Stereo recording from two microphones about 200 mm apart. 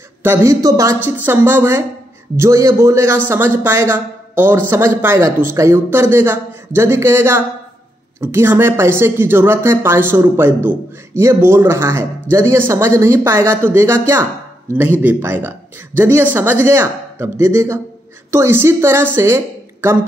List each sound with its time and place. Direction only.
0.2 s a woman's voice: 10° right (ahead or behind)